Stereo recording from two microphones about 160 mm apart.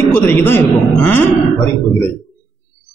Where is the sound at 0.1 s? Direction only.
15° left (ahead or behind).